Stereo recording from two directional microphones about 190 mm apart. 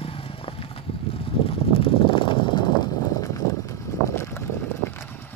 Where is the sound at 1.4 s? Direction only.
30° left (ahead or behind); by 4.4 s 15° left (ahead or behind).